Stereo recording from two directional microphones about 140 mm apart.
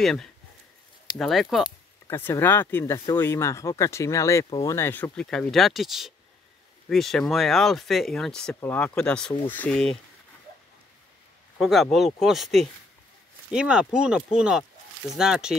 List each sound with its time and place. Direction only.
0.0 s speech: 5° left (ahead or behind)
2.0 s speech: 15° left (ahead or behind)
5.1 s speech: 5° left (ahead or behind)
11.5 s speech: centre (ahead or behind)